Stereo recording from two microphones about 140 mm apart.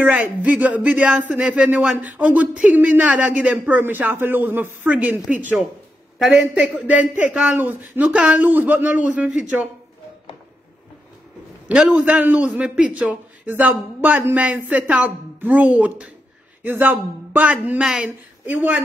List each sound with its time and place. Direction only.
0.0 s a man's voice: 10° right (ahead or behind)
11.7 s a man's voice: 10° right (ahead or behind)